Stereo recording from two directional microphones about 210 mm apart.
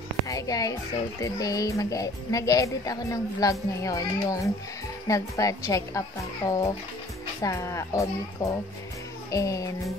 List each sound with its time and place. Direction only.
0.3 s a child's voice: 15° left (ahead or behind)